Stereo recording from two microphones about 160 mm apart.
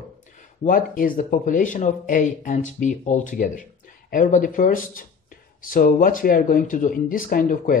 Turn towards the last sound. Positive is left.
turn(degrees=60)  # may be behind; listen again after turning